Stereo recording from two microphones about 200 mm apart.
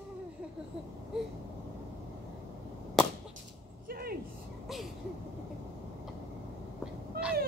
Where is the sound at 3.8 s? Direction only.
50° right (ahead or behind).